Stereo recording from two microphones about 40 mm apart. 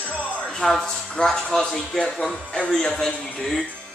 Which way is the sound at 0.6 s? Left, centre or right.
Centre.